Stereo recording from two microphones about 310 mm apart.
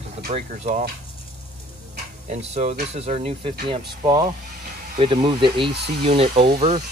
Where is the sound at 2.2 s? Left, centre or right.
Right.